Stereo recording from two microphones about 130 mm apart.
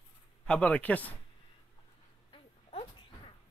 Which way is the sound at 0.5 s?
10° left (ahead or behind).